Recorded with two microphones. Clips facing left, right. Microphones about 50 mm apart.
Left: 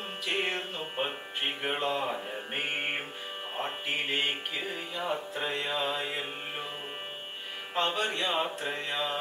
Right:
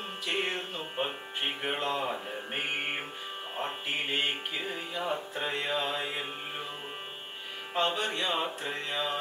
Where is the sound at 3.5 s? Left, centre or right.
Centre.